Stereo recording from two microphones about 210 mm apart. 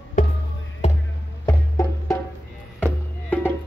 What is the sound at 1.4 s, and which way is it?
Music, 15° left (ahead or behind).